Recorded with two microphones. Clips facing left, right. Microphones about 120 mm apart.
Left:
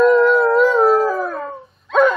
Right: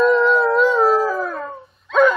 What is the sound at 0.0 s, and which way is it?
Howl, 5° left (ahead or behind).